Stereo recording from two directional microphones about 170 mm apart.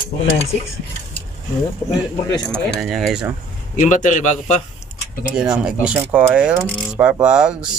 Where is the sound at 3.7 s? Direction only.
45° left (ahead or behind).